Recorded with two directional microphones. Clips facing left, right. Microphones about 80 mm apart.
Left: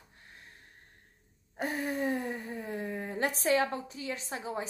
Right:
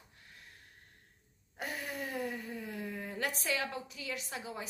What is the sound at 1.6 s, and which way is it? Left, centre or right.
A woman's voice, left.